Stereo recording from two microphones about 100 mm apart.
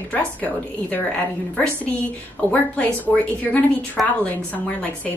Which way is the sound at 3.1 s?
15° left (ahead or behind).